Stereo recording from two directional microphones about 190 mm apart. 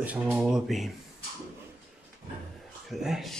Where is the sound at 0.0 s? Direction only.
5° right (ahead or behind).